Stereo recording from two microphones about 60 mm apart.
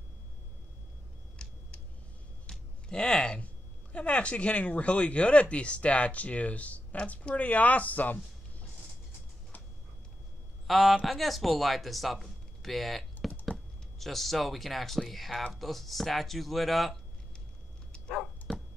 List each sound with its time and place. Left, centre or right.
1.4 s a sound: centre
2.9 s speech: centre; by 8.2 s left
10.7 s speech: centre